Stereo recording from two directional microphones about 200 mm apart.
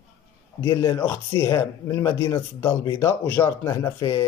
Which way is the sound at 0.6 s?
20° left (ahead or behind).